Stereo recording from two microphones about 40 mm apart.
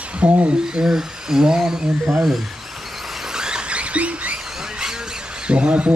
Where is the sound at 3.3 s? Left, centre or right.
Centre.